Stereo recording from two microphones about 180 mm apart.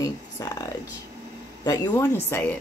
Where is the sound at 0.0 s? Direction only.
20° left (ahead or behind).